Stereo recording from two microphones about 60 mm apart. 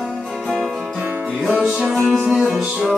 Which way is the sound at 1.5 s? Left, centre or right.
Right.